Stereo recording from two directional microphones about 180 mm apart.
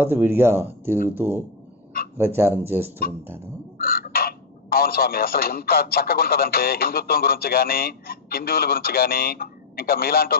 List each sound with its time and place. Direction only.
0.0 s speech: 10° right (ahead or behind)
3.7 s speech: 55° left (ahead or behind)